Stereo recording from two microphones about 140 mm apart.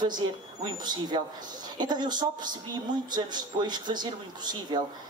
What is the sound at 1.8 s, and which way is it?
Speech, 30° right (ahead or behind).